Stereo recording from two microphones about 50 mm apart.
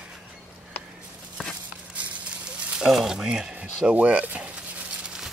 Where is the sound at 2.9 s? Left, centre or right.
Centre.